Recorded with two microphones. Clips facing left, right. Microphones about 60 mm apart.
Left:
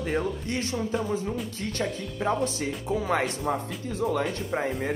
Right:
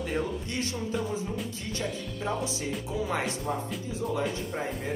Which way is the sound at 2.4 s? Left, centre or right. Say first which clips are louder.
Left 3 dB; left.